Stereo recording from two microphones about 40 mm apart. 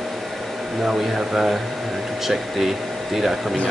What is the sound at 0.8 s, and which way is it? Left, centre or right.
Speech, centre.